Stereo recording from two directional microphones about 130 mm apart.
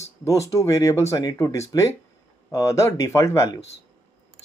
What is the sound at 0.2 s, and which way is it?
Speech, 25° left (ahead or behind).